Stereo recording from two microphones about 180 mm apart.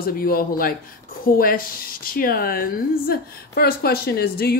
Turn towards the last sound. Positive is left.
turn(degrees=60)  # may be behind; listen again after turning